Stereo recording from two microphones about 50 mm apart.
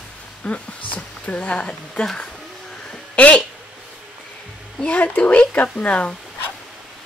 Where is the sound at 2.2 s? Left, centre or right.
Centre.